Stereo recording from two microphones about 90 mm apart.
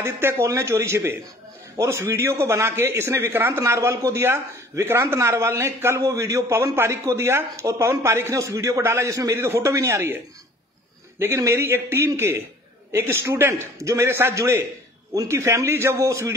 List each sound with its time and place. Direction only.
0.0 s a man's voice: 25° right (ahead or behind)
11.1 s a man's voice: 30° right (ahead or behind)